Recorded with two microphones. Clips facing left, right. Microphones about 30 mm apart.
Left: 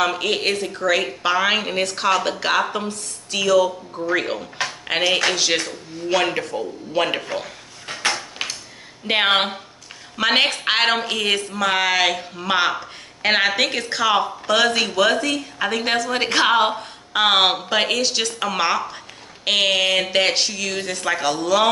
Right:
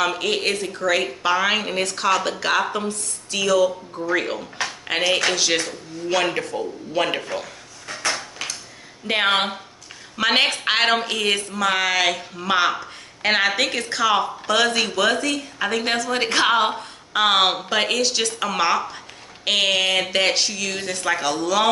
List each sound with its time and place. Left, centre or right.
0.0 s speech: centre
7.8 s drawer open or close: left
8.1 s a sound: left
9.0 s speech: centre